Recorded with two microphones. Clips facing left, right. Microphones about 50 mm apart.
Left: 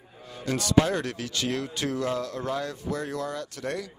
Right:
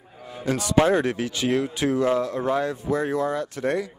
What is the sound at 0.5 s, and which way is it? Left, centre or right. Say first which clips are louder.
Speech: right 4 dB; centre.